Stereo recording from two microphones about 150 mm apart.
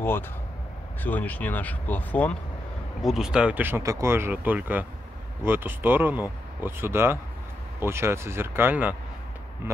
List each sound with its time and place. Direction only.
1.0 s speech: 10° left (ahead or behind)
3.0 s speech: centre (ahead or behind)